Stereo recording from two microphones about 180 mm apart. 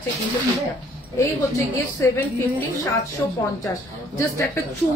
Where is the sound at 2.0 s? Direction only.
15° left (ahead or behind).